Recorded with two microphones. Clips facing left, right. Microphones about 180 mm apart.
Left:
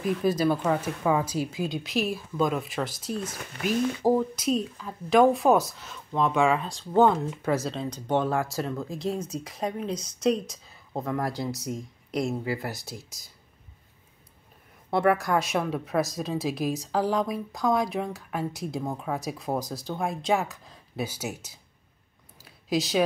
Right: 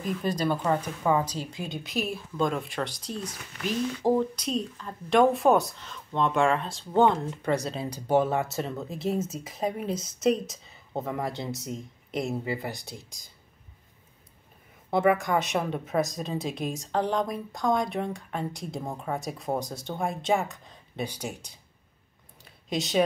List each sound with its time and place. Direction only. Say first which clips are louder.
0.0 s a woman's voice: left 4 dB; 5° left (ahead or behind)
3.2 s speech: left 1 dB; 50° left (ahead or behind)
3.6 s a woman's voice: left 2 dB; 10° left (ahead or behind)
14.9 s a woman's voice: even; centre (ahead or behind)
22.4 s a sound: left 4 dB; centre (ahead or behind)